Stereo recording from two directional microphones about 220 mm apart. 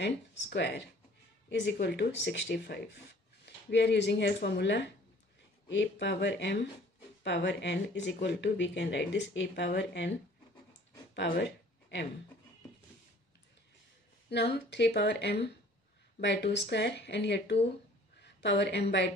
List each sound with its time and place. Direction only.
0.0 s speech: 50° left (ahead or behind)
11.1 s a sound: 50° left (ahead or behind)
14.3 s a woman's voice: 50° left (ahead or behind)